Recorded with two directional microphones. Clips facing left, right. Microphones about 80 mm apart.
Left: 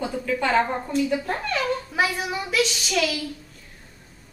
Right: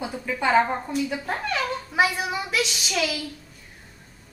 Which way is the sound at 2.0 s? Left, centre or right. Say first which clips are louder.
Right 4 dB; centre.